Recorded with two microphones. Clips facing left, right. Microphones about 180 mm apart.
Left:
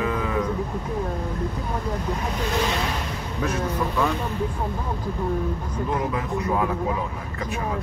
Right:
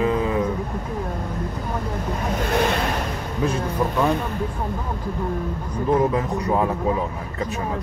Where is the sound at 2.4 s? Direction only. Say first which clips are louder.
Right 4 dB; 55° right (ahead or behind).